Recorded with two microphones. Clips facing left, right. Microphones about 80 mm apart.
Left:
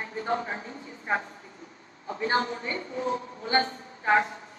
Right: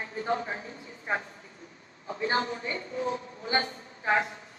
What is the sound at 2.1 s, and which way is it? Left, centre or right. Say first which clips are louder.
A woman's voice: left 2 dB; left.